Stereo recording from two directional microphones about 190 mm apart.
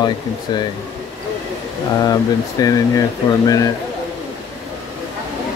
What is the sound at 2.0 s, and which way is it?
Speech, 20° left (ahead or behind).